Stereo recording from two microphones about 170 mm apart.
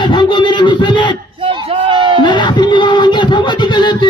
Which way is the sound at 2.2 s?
25° left (ahead or behind).